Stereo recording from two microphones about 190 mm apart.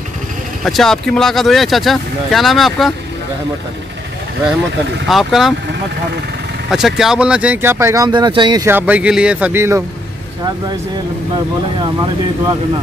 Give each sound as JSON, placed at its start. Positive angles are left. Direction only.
{"t": 0.7, "sound": "speech", "side_deg": 0}
{"t": 5.0, "sound": "speech", "side_deg": 0}
{"t": 6.7, "sound": "speech", "side_deg": 0}
{"t": 8.6, "sound": "speech", "side_deg": -10}
{"t": 11.8, "sound": "speech", "side_deg": -20}